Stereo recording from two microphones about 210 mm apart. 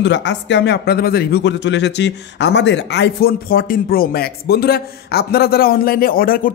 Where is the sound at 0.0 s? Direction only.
55° left (ahead or behind).